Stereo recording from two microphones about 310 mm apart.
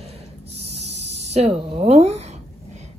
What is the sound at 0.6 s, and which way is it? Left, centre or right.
Snake, centre.